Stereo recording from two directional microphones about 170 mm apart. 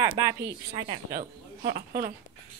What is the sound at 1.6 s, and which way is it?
Speech, 55° right (ahead or behind).